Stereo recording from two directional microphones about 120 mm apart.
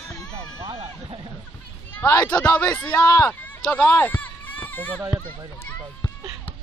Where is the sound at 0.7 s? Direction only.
50° right (ahead or behind).